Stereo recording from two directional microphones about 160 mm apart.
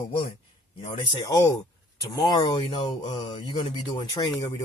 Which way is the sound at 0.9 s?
25° left (ahead or behind).